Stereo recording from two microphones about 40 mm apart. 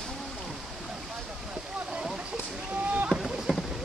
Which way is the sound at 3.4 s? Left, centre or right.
Centre.